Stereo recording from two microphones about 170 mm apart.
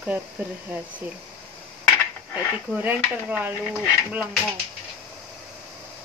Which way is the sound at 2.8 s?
10° right (ahead or behind).